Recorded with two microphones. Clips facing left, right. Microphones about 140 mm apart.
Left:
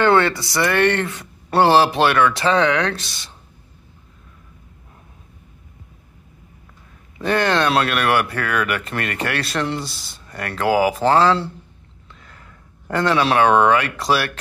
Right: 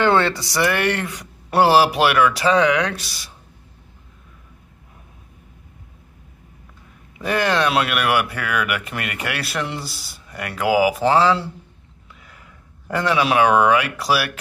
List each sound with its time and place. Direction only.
0.0 s speech: 15° right (ahead or behind)
7.2 s speech: 5° right (ahead or behind)